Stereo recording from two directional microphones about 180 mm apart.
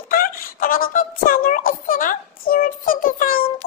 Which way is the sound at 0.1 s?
50° left (ahead or behind).